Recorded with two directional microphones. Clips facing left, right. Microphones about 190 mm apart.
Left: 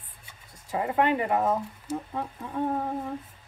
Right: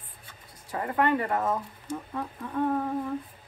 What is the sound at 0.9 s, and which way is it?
Speech, 20° left (ahead or behind).